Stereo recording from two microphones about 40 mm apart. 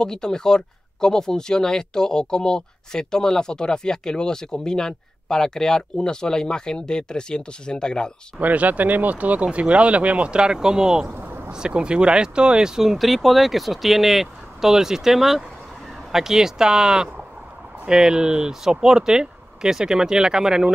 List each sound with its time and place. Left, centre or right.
0.0 s speech: centre
8.4 s speech: right
10.4 s speech: centre
11.1 s a sound: right
11.5 s speech: right